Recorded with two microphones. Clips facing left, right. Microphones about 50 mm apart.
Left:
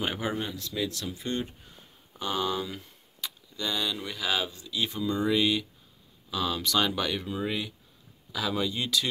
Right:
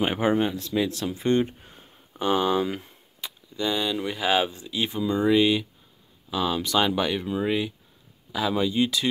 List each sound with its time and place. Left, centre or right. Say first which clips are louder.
0.0 s speech: right 8 dB; right
3.2 s speech: right 5 dB; centre